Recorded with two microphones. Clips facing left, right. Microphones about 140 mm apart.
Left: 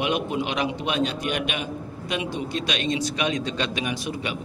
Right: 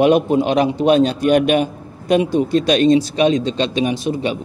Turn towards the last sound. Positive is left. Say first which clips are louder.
# right 9 dB
turn(degrees=-30)  # may be behind; listen again after turning